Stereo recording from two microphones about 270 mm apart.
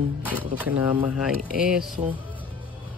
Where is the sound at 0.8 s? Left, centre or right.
Centre.